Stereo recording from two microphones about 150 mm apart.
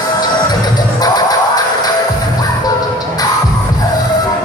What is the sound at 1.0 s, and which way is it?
Music, 25° left (ahead or behind).